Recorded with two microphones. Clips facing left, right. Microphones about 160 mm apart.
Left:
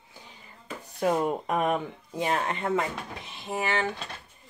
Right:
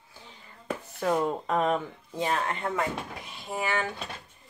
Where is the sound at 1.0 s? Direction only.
15° left (ahead or behind).